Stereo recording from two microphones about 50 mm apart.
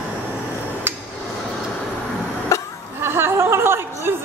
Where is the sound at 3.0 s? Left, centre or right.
Right.